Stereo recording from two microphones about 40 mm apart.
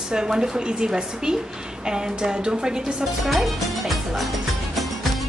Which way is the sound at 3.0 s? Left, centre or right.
Centre.